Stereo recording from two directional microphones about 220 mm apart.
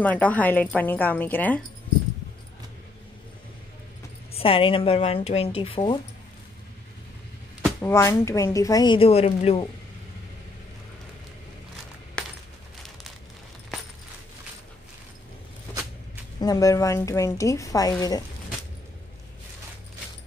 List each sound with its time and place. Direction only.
0.0 s speech: 5° left (ahead or behind)
4.3 s speech: 25° left (ahead or behind)
7.8 s speech: 10° left (ahead or behind); by 9.7 s 25° left (ahead or behind)
12.2 s coin: 5° left (ahead or behind)
16.3 s speech: 15° left (ahead or behind)